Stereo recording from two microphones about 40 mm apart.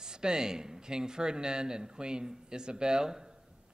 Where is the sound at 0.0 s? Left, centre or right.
Centre.